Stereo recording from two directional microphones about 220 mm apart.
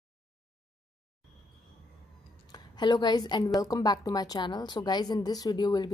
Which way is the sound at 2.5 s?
20° left (ahead or behind).